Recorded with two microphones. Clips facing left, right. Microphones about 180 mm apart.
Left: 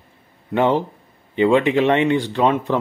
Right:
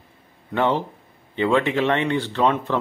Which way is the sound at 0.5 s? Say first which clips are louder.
Left 4 dB; 15° left (ahead or behind).